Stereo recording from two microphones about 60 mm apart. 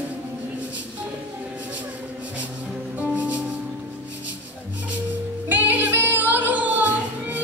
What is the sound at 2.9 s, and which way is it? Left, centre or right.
Music, right.